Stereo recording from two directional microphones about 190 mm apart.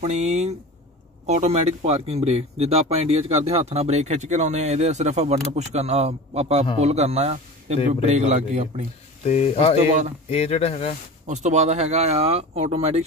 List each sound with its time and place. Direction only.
0.0 s speech: 35° right (ahead or behind)
9.2 s speech: 35° left (ahead or behind)
11.2 s speech: 40° right (ahead or behind)